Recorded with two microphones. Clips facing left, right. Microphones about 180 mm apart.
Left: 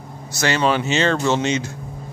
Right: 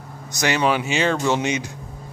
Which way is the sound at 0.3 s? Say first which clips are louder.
Left 1 dB; 15° right (ahead or behind).